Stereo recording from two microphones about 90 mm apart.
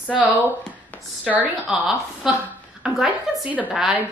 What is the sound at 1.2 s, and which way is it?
Speech, 20° right (ahead or behind).